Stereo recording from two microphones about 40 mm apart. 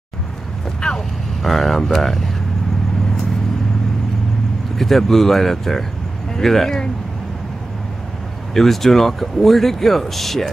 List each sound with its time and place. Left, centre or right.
0.7 s vehicle: left
1.4 s speech: centre
4.7 s speech: centre
8.5 s speech: centre